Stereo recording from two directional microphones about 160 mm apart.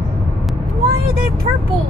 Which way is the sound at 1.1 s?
65° right (ahead or behind).